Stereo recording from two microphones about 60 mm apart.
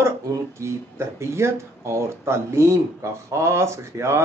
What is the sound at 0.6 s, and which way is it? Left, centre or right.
Speech, right.